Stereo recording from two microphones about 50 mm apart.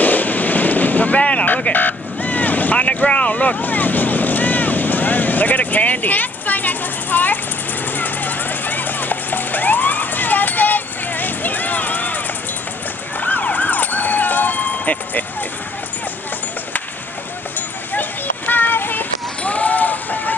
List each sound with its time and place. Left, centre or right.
0.0 s boat: left
1.7 s vehicle: left
2.8 s vehicle: left
8.0 s music: left
13.2 s emergency vehicle: left
18.5 s child singing: left
19.4 s a sound: left